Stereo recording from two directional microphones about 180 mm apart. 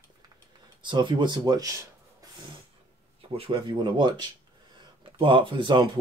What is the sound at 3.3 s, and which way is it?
Speech, 30° right (ahead or behind).